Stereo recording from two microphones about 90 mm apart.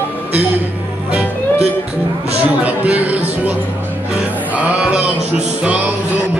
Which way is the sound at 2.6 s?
15° right (ahead or behind).